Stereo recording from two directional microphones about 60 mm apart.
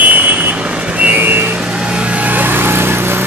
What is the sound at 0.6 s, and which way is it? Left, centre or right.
Vehicle, centre.